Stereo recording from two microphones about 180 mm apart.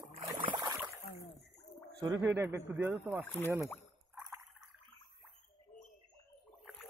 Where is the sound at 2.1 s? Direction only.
10° right (ahead or behind).